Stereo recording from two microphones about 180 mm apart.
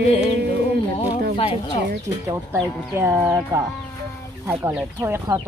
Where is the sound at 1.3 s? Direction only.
30° left (ahead or behind).